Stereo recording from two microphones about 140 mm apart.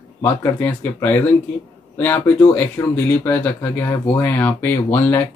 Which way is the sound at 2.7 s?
15° left (ahead or behind).